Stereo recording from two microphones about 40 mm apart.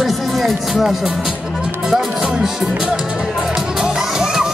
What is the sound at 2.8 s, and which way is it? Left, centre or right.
Speech, centre.